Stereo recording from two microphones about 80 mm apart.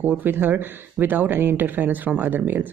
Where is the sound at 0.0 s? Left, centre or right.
Right.